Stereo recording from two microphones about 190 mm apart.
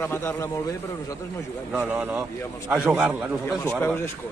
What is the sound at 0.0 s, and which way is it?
Speech, 10° left (ahead or behind).